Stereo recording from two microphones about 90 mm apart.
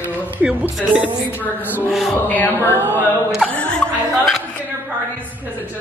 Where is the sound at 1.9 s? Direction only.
Centre (ahead or behind).